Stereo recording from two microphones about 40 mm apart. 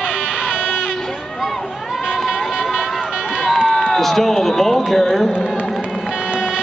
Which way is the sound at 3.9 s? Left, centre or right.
Centre.